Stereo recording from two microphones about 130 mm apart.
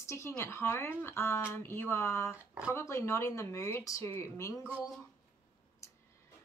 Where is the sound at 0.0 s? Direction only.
20° left (ahead or behind).